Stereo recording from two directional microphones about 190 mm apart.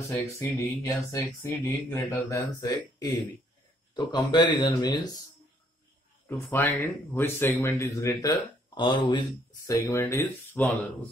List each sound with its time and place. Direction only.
0.4 s speech: 15° left (ahead or behind)
6.2 s speech: 10° left (ahead or behind)